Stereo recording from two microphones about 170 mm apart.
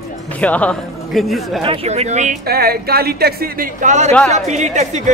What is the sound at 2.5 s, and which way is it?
Speech, 65° right (ahead or behind).